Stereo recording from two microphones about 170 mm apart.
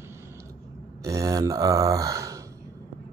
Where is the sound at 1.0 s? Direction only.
20° right (ahead or behind).